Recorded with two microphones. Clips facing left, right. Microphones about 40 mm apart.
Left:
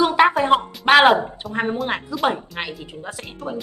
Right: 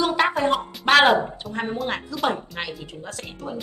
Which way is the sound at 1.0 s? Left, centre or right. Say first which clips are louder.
Left 3 dB; centre.